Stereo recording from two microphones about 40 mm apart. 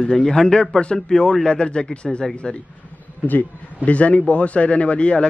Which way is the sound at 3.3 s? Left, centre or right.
Left.